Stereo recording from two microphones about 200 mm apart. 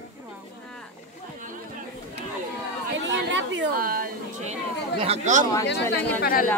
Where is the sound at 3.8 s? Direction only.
45° right (ahead or behind).